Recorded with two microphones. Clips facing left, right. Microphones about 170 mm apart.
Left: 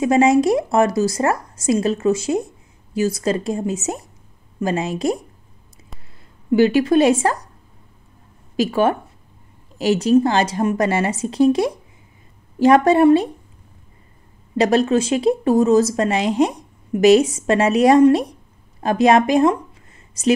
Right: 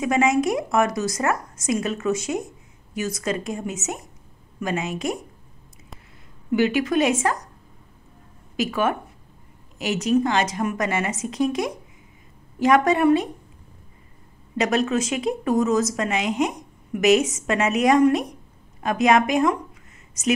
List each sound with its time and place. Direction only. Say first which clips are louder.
0.0 s a woman's voice: left 6 dB; 30° left (ahead or behind)
6.5 s a woman's voice: left 6 dB; 30° left (ahead or behind)
8.5 s a woman's voice: left 5 dB; 30° left (ahead or behind)
14.6 s a woman's voice: left 6 dB; 30° left (ahead or behind)